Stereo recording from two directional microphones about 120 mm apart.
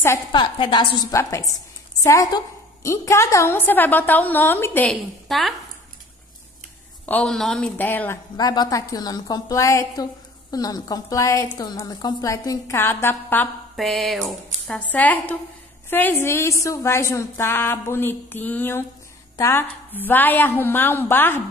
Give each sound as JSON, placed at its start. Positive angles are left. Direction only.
{"t": 0.3, "sound": "a woman's voice", "side_deg": 40}
{"t": 2.0, "sound": "a woman's voice", "side_deg": 25}
{"t": 4.8, "sound": "a woman's voice", "side_deg": 0}
{"t": 7.1, "sound": "a woman's voice", "side_deg": 10}
{"t": 8.4, "sound": "a woman's voice", "side_deg": 35}
{"t": 13.7, "sound": "a woman's voice", "side_deg": 0}